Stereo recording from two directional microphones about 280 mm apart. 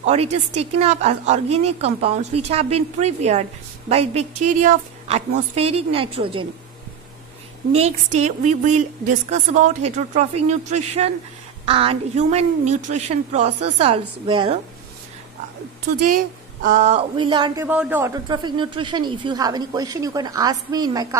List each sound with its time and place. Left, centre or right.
0.0 s a woman's voice: right
7.7 s a woman's voice: right
16.6 s speech: right